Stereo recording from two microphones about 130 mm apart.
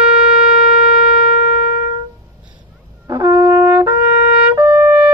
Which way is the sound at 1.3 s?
90° left.